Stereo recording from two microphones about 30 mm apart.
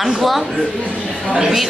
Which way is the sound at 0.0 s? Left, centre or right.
Centre.